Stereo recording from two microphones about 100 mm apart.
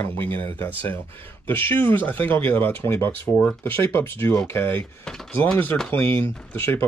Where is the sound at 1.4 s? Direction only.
20° left (ahead or behind).